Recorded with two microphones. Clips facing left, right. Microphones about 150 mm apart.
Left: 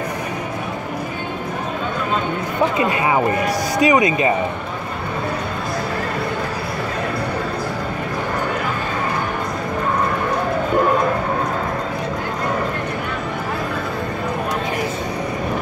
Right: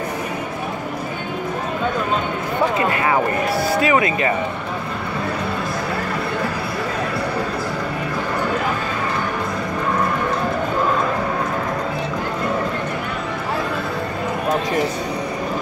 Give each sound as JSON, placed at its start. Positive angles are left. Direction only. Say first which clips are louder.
{"t": 3.8, "sound": "speech", "louder": "left 6 dB", "side_deg": 20}